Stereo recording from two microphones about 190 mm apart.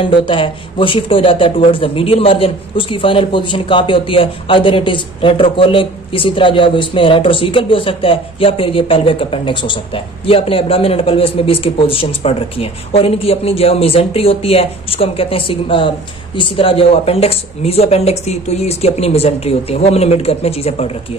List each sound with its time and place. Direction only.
0.0 s a woman's voice: 25° left (ahead or behind)